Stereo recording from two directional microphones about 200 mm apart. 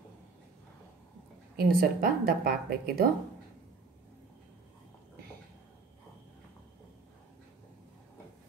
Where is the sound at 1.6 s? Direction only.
50° right (ahead or behind).